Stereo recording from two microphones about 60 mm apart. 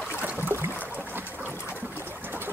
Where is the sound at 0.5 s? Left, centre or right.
Right.